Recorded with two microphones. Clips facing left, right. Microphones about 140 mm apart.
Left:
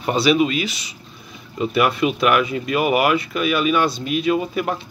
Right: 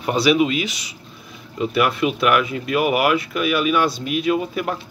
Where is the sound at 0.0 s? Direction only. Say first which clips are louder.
Even; 10° right (ahead or behind).